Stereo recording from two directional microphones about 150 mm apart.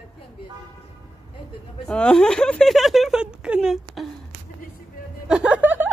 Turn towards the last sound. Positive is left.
turn(degrees=-10)  # may be behind; listen again after turning